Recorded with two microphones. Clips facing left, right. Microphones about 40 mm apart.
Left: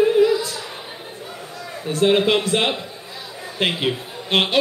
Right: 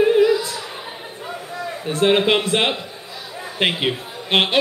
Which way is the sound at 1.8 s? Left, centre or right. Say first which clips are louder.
Even; centre.